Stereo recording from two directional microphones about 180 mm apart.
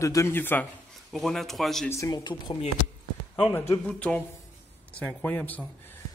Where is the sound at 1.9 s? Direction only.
20° left (ahead or behind).